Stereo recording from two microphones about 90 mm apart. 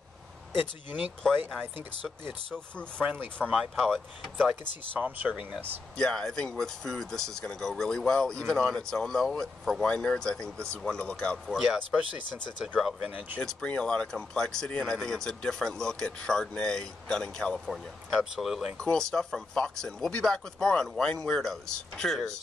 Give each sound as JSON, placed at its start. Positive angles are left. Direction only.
{"t": 0.6, "sound": "speech", "side_deg": -15}
{"t": 2.0, "sound": "speech", "side_deg": 5}
{"t": 3.0, "sound": "speech", "side_deg": -20}
{"t": 3.5, "sound": "speech", "side_deg": 0}
{"t": 4.9, "sound": "speech", "side_deg": -15}
{"t": 5.9, "sound": "speech", "side_deg": 5}
{"t": 11.5, "sound": "speech", "side_deg": -5}
{"t": 13.4, "sound": "speech", "side_deg": 10}
{"t": 18.1, "sound": "speech", "side_deg": -5}
{"t": 18.8, "sound": "speech", "side_deg": 5}